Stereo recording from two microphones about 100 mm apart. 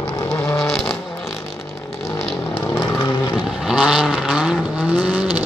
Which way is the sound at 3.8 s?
5° right (ahead or behind).